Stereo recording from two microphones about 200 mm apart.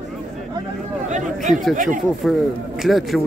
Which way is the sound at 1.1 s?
40° right (ahead or behind).